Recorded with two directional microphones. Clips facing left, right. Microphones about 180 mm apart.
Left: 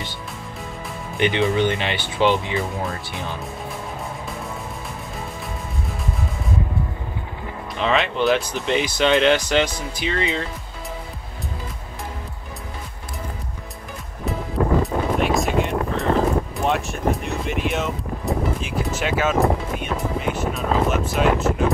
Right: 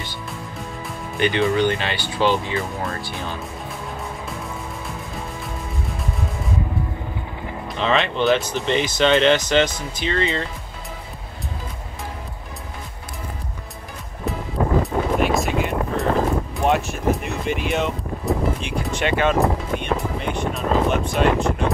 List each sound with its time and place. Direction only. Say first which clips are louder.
1.1 s speech: even; 20° left (ahead or behind)
7.8 s speech: even; centre (ahead or behind)
14.8 s music: right 1 dB; centre (ahead or behind)